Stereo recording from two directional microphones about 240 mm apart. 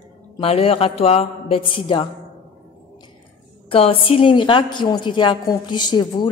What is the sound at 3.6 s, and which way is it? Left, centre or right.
A woman's voice, left.